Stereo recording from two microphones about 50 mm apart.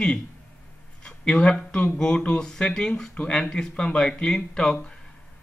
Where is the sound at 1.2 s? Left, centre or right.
Centre.